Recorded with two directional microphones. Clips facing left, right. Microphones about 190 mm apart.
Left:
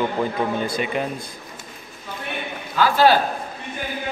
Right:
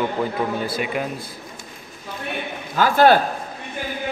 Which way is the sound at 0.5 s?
5° right (ahead or behind).